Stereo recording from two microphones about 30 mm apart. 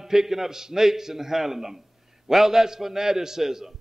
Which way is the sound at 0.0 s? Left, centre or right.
Centre.